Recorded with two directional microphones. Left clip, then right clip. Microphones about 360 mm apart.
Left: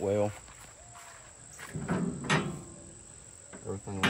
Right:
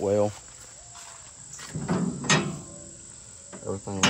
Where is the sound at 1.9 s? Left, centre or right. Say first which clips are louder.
Right 6 dB; centre.